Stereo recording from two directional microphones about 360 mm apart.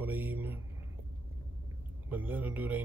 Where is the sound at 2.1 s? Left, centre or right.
Centre.